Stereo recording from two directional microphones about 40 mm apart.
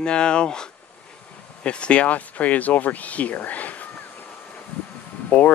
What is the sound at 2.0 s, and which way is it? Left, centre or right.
Speech, left.